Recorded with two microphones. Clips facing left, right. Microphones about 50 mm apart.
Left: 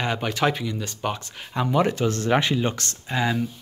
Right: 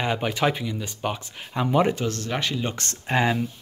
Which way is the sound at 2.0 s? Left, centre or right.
Left.